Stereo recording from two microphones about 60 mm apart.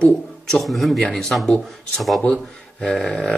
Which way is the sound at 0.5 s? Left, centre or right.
Centre.